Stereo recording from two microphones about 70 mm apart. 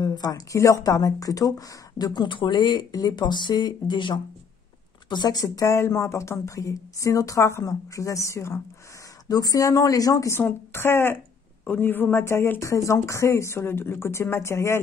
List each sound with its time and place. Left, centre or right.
0.0 s speech: left
5.1 s speech: left
5.7 s a woman's voice: left
9.3 s speech: left
10.3 s speech: left